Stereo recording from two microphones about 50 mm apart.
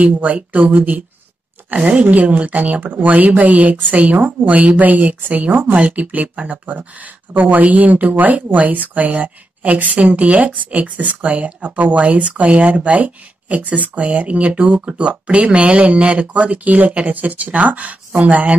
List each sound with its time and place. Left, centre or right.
0.0 s a woman's voice: right
5.8 s a woman's voice: right